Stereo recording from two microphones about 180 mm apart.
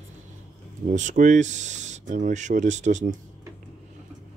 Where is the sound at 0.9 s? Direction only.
45° right (ahead or behind).